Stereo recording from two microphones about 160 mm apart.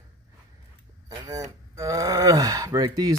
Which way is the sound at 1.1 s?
20° right (ahead or behind).